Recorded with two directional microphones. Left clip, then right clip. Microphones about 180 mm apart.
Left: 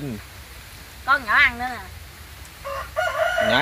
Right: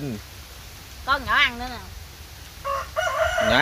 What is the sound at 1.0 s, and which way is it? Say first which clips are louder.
Speech: left 3 dB; 40° right (ahead or behind).